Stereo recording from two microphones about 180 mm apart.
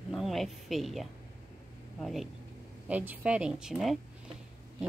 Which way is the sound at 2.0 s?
Centre (ahead or behind).